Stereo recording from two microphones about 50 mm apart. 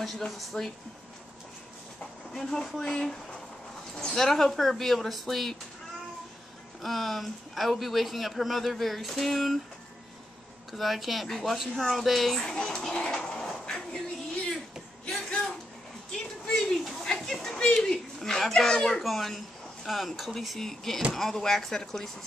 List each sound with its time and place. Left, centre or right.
0.0 s a man's voice: centre
2.3 s a man's voice: centre
6.8 s a man's voice: centre
10.7 s a man's voice: centre
12.4 s speech: centre
15.0 s a sound: centre
17.5 s a sound: centre
17.7 s a sound: centre
18.6 s a child's voice: centre
18.9 s a man's voice: centre